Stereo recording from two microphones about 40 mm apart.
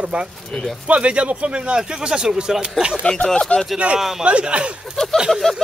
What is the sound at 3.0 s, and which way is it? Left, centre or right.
Speech, left.